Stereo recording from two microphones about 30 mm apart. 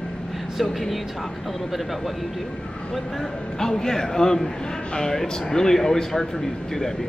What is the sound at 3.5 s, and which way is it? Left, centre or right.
Speech, centre.